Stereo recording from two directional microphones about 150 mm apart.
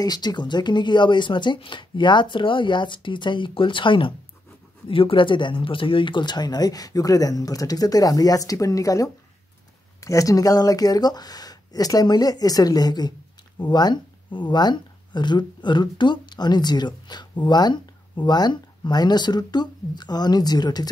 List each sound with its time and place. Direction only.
0.0 s speech: 30° left (ahead or behind)